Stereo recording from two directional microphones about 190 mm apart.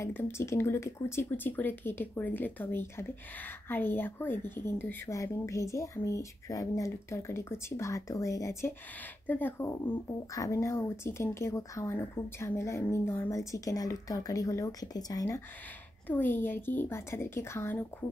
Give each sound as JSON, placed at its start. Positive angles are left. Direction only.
{"t": 0.0, "sound": "speech", "side_deg": 15}